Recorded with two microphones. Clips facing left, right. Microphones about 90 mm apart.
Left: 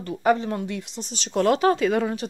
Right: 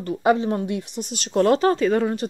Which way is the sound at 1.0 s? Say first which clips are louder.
Right 4 dB; 50° right (ahead or behind).